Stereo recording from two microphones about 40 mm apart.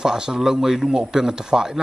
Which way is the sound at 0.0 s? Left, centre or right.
Centre.